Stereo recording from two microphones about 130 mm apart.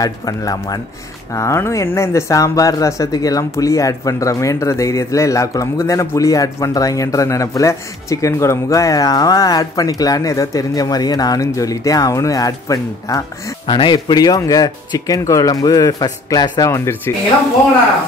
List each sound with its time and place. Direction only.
0.0 s speech: 30° left (ahead or behind)